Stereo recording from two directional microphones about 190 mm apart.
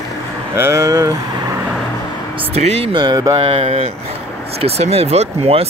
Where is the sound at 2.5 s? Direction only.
30° right (ahead or behind).